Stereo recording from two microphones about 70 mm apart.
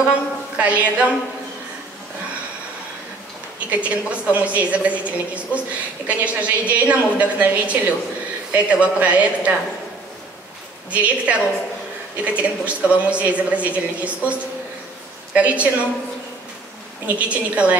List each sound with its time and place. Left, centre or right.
0.0 s speech: centre
3.7 s a man's voice: centre
10.9 s speech: centre
17.0 s speech: centre